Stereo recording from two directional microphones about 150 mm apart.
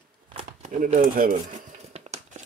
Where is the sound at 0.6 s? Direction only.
60° right (ahead or behind).